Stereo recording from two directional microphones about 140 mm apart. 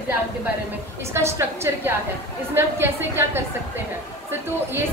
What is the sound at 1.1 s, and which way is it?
A woman's voice, 20° right (ahead or behind).